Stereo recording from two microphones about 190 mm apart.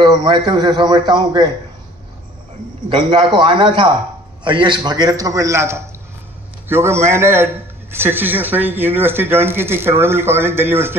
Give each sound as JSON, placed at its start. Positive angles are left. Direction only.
{"t": 0.0, "sound": "a man's voice", "side_deg": -25}
{"t": 2.9, "sound": "a man's voice", "side_deg": -25}